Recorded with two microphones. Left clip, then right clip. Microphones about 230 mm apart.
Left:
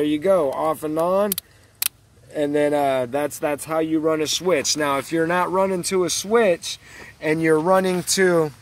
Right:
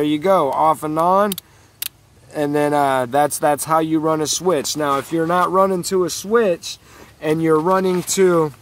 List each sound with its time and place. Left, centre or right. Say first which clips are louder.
0.0 s speech: right 3 dB; right
2.3 s speech: right 2 dB; right
4.7 s speech: right 2 dB; centre
7.5 s speech: right 1 dB; centre